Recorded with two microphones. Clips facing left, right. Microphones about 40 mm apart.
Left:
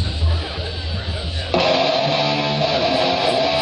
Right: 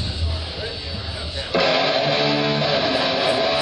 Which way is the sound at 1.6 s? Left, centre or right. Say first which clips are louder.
Left 1 dB; right.